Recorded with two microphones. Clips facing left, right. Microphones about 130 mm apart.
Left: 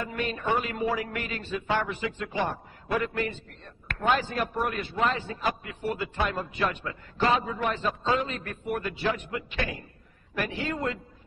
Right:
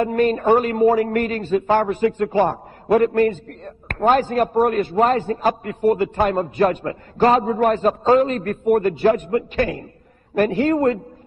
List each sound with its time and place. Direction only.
0.0 s a man's voice: 45° right (ahead or behind)